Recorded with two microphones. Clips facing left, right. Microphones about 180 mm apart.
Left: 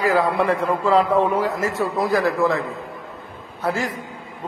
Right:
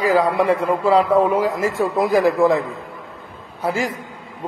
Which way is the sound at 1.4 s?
10° right (ahead or behind).